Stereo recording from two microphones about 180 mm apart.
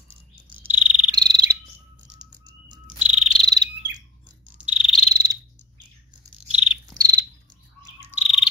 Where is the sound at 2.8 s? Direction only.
5° right (ahead or behind).